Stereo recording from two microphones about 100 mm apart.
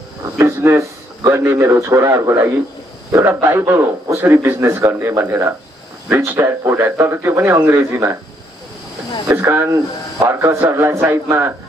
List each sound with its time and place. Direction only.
0.4 s a man's voice: 25° right (ahead or behind)
9.5 s a man's voice: 25° right (ahead or behind)